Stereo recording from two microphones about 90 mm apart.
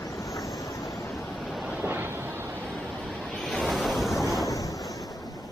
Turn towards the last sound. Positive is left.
turn(degrees=40)  # may be behind; listen again after turning